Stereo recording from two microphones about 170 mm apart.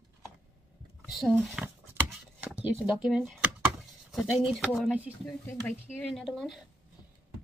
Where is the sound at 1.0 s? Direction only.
Centre (ahead or behind).